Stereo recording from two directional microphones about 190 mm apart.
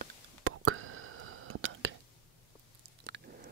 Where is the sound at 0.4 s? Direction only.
90° right.